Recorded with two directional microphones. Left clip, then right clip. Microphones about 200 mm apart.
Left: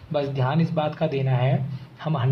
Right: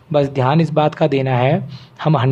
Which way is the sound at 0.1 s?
50° right (ahead or behind).